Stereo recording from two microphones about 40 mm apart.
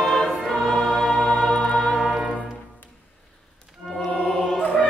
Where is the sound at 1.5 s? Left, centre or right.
Left.